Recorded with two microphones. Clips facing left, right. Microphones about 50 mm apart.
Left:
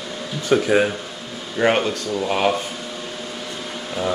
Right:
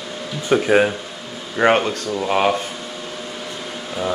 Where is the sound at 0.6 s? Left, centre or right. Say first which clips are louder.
Right 2 dB; right.